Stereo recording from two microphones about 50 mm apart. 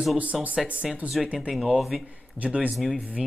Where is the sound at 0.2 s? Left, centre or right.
Right.